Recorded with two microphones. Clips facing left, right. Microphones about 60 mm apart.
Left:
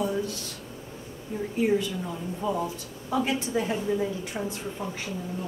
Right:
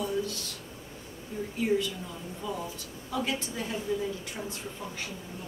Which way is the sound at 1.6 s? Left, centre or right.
Left.